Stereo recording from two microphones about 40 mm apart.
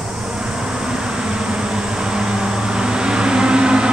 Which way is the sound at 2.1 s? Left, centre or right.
Centre.